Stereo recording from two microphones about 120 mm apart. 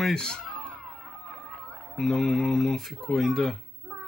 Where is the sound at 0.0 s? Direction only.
5° left (ahead or behind).